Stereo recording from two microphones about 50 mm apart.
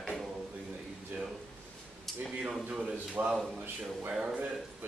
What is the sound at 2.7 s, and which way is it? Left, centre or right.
Speech, centre.